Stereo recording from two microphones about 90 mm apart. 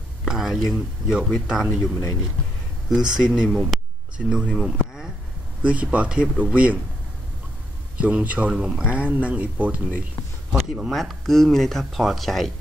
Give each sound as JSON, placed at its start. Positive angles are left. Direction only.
{"t": 0.2, "sound": "speech", "side_deg": -5}
{"t": 1.8, "sound": "speech", "side_deg": 35}
{"t": 2.9, "sound": "speech", "side_deg": -5}
{"t": 4.6, "sound": "a sound", "side_deg": -5}
{"t": 5.6, "sound": "speech", "side_deg": -15}
{"t": 8.0, "sound": "speech", "side_deg": -15}
{"t": 10.5, "sound": "speech", "side_deg": -5}